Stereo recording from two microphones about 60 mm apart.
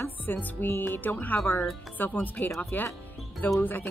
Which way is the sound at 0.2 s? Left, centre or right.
Left.